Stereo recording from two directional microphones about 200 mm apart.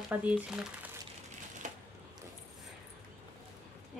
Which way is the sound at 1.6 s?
40° right (ahead or behind).